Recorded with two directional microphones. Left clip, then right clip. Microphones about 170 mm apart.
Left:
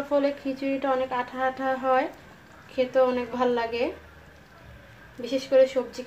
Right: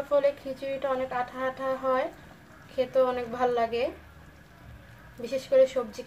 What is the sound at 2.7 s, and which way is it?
A woman's voice, 20° left (ahead or behind).